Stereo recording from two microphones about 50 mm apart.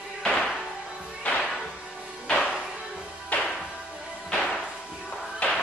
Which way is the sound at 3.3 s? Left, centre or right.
Left.